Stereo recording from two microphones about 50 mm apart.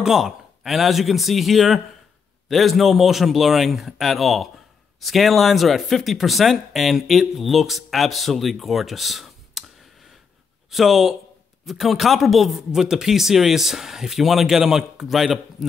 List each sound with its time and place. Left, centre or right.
0.0 s speech: centre
10.7 s speech: centre